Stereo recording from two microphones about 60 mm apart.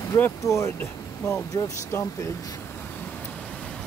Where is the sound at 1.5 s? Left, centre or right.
Left.